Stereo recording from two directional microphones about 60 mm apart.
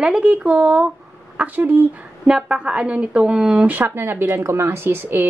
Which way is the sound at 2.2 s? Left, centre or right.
Centre.